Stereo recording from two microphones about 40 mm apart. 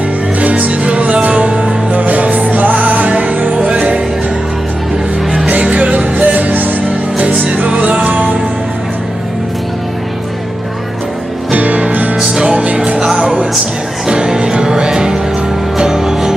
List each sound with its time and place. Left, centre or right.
0.4 s music: right
2.7 s music: right
5.5 s music: right
11.5 s music: right
12.2 s music: right